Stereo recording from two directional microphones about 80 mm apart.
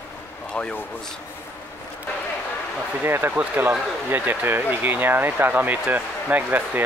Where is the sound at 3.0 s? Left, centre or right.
Right.